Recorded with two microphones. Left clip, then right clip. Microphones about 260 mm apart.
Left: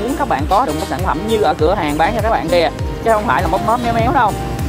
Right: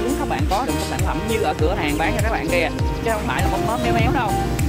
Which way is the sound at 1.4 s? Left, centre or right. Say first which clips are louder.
Left 8 dB; left.